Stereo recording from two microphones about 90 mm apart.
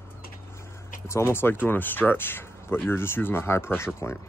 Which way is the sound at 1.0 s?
30° left (ahead or behind).